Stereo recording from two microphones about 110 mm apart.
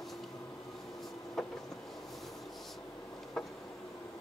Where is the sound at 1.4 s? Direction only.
Centre (ahead or behind).